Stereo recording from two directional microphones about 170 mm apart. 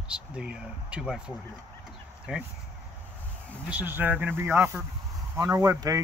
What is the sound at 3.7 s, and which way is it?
Speech, 10° right (ahead or behind).